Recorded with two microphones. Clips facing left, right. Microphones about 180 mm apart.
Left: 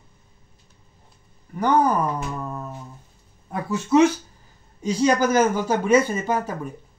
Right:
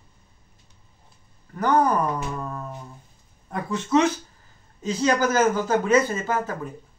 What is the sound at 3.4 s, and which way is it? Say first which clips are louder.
A man's voice: left 2 dB; 10° left (ahead or behind).